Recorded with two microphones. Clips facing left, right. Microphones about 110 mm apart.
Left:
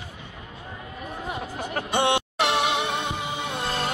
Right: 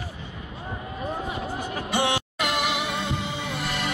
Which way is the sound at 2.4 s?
25° left (ahead or behind).